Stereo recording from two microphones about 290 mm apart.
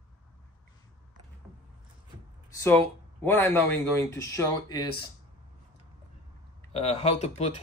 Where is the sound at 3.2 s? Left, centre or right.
Centre.